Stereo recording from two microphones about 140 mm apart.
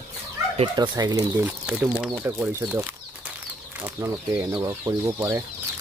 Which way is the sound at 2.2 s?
15° right (ahead or behind).